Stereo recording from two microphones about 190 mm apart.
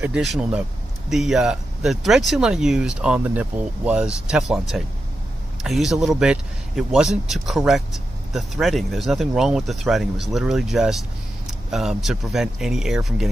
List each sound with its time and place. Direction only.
0.0 s a man's voice: 5° right (ahead or behind)